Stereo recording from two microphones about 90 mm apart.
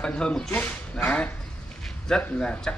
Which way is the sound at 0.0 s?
10° left (ahead or behind).